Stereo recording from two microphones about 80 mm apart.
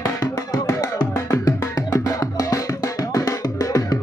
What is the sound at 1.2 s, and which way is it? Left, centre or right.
Music, left.